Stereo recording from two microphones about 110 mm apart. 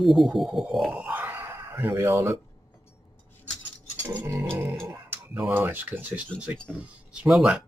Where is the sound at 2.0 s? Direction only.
30° right (ahead or behind).